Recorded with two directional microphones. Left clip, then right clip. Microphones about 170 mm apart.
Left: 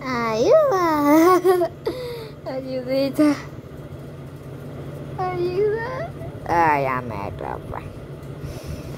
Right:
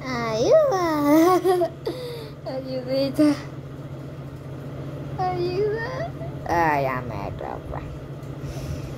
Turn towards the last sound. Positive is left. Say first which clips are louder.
# left 2 dB
turn(degrees=10)  # may be behind; listen again after turning